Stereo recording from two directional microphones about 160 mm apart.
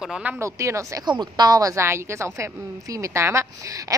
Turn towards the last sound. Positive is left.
turn(degrees=-20)  # may be behind; listen again after turning